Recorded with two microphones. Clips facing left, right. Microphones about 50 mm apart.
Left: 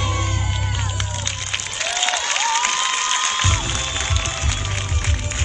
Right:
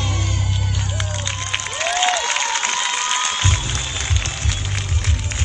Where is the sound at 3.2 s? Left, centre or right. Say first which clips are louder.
Left 1 dB; centre.